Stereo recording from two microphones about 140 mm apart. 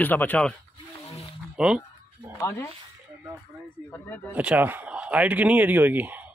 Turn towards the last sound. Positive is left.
turn(degrees=-10)  # may be behind; listen again after turning